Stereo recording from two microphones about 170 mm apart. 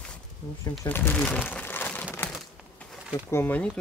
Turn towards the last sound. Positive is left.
turn(degrees=10)  # may be behind; listen again after turning